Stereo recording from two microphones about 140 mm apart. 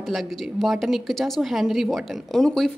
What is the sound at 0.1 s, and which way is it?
A woman's voice, centre (ahead or behind).